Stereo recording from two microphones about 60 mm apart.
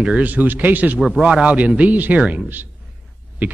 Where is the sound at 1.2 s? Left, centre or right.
Centre.